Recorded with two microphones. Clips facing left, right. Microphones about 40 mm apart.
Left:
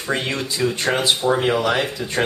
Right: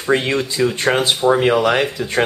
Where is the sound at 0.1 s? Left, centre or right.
Right.